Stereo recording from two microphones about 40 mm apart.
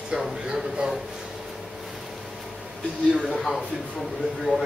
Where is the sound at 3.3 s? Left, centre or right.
Centre.